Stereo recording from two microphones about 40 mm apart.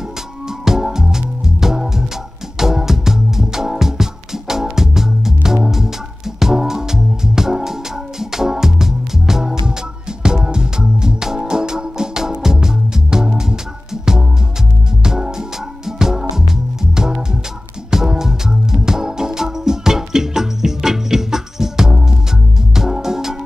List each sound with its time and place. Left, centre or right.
0.7 s music: centre
15.0 s music: centre